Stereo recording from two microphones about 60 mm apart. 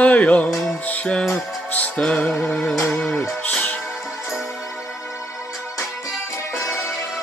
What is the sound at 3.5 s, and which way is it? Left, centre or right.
Music, left.